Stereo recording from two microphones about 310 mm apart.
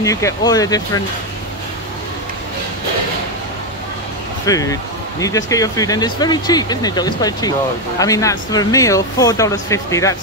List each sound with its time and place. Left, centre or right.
0.0 s speech: centre
4.5 s speech: centre